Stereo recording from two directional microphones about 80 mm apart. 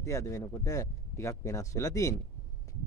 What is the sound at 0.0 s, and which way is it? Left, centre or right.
Speech, left.